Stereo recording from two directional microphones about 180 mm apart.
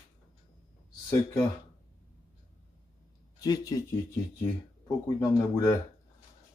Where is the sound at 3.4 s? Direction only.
20° left (ahead or behind).